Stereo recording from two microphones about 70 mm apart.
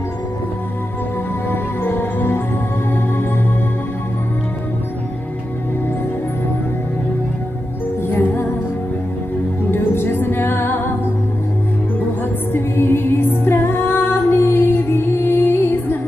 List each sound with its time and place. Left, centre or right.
1.5 s music: left
8.1 s music: left
9.7 s music: left
12.5 s music: left